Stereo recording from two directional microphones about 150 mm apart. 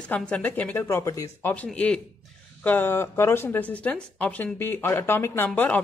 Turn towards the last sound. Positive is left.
turn(degrees=10)  # may be behind; listen again after turning